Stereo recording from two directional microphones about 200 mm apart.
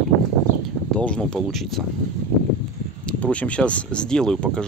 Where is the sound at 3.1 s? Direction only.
5° left (ahead or behind).